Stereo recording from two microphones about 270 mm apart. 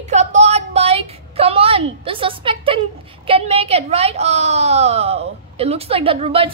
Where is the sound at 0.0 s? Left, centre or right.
Right.